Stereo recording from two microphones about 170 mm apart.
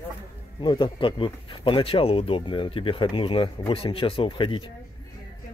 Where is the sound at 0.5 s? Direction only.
30° left (ahead or behind).